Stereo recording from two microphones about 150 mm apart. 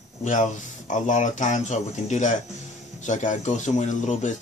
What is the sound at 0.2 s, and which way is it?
Speech, 50° left (ahead or behind).